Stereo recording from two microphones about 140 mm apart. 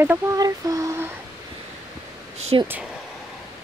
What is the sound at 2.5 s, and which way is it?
Speech, 35° right (ahead or behind).